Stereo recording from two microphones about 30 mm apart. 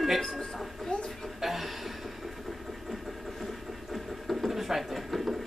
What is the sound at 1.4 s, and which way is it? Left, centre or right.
Chuckle, centre.